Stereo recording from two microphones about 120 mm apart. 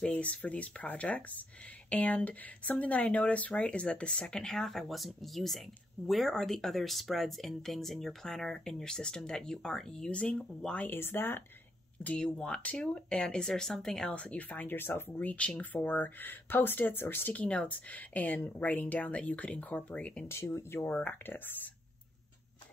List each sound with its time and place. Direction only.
0.0 s speech: 10° left (ahead or behind)
20.3 s speech: 20° left (ahead or behind)